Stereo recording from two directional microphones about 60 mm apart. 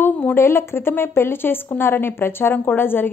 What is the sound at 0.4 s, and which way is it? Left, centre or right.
Speech, left.